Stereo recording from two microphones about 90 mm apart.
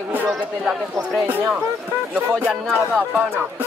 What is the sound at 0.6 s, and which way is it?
Speech, 5° right (ahead or behind).